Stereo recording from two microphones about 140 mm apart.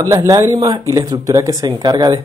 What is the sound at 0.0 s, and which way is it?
Speech, 25° right (ahead or behind).